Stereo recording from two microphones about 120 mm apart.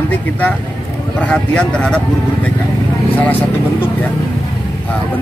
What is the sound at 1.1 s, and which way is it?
Speech, 10° left (ahead or behind).